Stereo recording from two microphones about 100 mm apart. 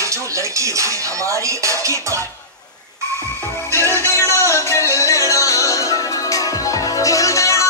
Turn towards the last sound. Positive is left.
turn(degrees=30)  # may be behind; listen again after turning